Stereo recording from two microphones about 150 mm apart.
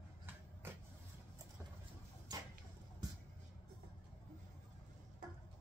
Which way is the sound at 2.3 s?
25° right (ahead or behind).